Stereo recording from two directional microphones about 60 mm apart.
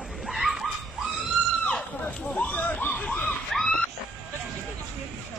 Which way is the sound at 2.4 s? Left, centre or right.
Left.